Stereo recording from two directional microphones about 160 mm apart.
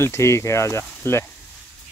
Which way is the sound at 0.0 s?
15° left (ahead or behind).